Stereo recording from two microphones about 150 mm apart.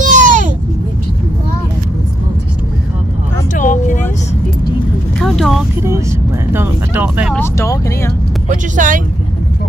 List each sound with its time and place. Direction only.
0.0 s a sound: 60° right (ahead or behind)
3.5 s vehicle: 55° left (ahead or behind)
5.2 s vehicle: centre (ahead or behind)
5.8 s vehicle: 20° right (ahead or behind)
6.5 s a sound: 15° right (ahead or behind)
7.3 s vehicle: 20° left (ahead or behind)
8.5 s vehicle: 60° right (ahead or behind)